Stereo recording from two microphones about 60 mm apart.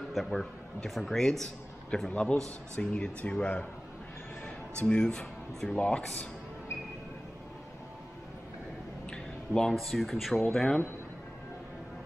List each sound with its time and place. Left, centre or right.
0.1 s a man's voice: centre
4.7 s a man's voice: centre
9.1 s a man's voice: centre